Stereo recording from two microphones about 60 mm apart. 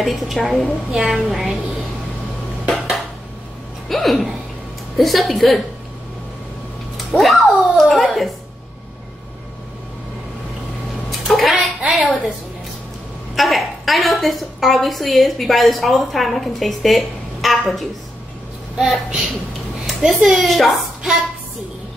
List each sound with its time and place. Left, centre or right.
0.0 s a woman's voice: centre
3.9 s a woman's voice: centre
7.0 s speech: centre
11.1 s a sound: centre
13.4 s a woman's voice: centre
20.2 s a woman's voice: centre